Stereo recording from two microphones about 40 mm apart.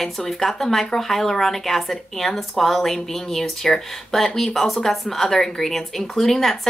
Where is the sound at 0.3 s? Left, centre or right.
Centre.